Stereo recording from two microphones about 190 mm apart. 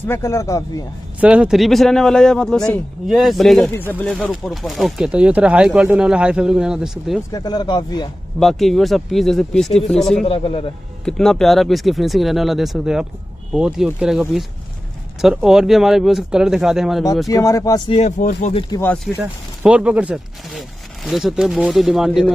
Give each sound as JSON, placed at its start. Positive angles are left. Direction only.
{"t": 0.0, "sound": "speech", "side_deg": 10}
{"t": 1.2, "sound": "speech", "side_deg": -5}
{"t": 7.2, "sound": "speech", "side_deg": 20}
{"t": 8.4, "sound": "speech", "side_deg": 0}
{"t": 10.2, "sound": "speech", "side_deg": 30}
{"t": 11.1, "sound": "speech", "side_deg": 5}
{"t": 17.3, "sound": "speech", "side_deg": 15}
{"t": 17.9, "sound": "speech", "side_deg": 40}
{"t": 19.2, "sound": "speech", "side_deg": -5}